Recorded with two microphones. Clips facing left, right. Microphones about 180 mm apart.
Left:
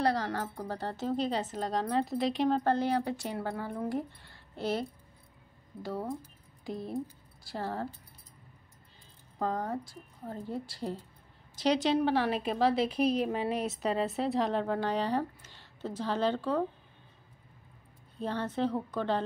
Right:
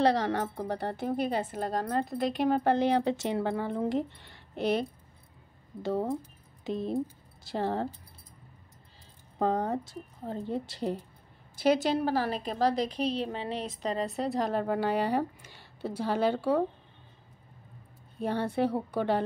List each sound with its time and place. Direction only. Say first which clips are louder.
0.1 s a woman's voice: right 4 dB; 20° right (ahead or behind)
0.7 s speech: right 4 dB; 60° right (ahead or behind)
1.0 s a woman's voice: even; 10° right (ahead or behind)
6.6 s a woman's voice: right 5 dB; 20° right (ahead or behind)
9.4 s a woman's voice: right 4 dB; 20° right (ahead or behind)
12.0 s a woman's voice: left 1 dB; centre (ahead or behind)
18.2 s a woman's voice: right 3 dB; 10° right (ahead or behind)